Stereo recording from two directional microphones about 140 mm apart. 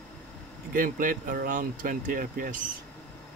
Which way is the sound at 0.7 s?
80° right.